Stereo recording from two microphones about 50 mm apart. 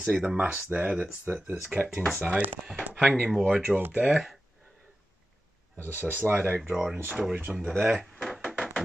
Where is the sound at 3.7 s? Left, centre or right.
Centre.